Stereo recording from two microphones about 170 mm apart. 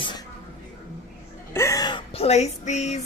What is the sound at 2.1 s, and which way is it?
Female singing, 40° left (ahead or behind).